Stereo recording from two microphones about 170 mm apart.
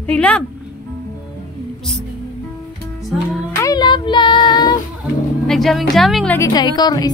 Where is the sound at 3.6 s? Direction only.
20° left (ahead or behind).